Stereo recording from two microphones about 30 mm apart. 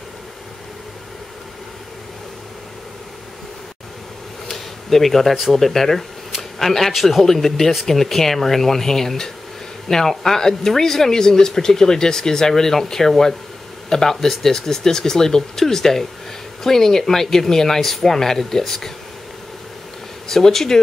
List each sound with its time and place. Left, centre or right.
4.5 s speech: centre
20.2 s speech: centre